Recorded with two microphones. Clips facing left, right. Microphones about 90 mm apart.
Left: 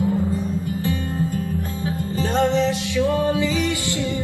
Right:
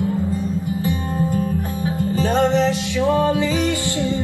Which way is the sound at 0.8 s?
20° right (ahead or behind).